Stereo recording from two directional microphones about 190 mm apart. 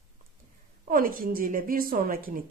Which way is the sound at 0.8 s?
50° right (ahead or behind).